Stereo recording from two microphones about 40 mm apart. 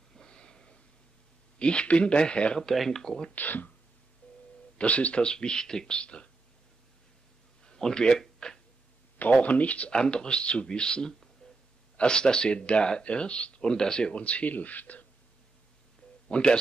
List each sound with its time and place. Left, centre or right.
0.1 s a sound: left
1.6 s speech: left
3.3 s speech: left
4.2 s telephone: left
4.7 s speech: left
5.2 s speech: left
7.6 s speech: centre
8.4 s a sound: left
9.4 s speech: left
11.4 s a sound: centre
12.0 s speech: left
14.1 s speech: left
16.3 s speech: left